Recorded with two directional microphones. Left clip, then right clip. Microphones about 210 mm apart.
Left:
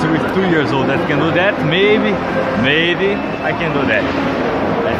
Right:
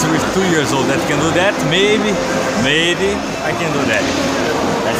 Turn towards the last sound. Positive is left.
turn(degrees=-15)  # may be behind; listen again after turning